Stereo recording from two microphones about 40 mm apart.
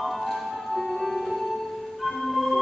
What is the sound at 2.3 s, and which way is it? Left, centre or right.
Music, centre.